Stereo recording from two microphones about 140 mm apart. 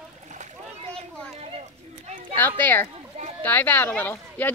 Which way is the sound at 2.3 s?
15° left (ahead or behind).